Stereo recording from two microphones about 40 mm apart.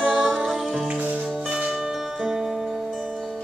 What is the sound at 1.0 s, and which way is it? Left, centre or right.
Music, right.